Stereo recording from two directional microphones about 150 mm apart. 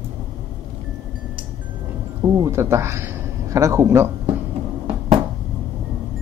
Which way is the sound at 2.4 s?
15° right (ahead or behind).